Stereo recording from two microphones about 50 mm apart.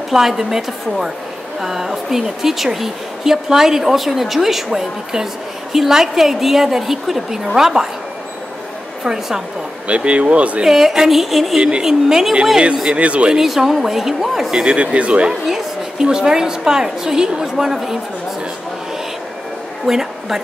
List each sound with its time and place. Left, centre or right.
0.1 s a woman's voice: centre
9.0 s a woman's voice: centre
9.8 s speech: right
10.6 s a woman's voice: centre
12.9 s speech: right
13.4 s a woman's voice: centre
14.8 s a woman's voice: right; by 17.9 s centre
19.9 s a woman's voice: centre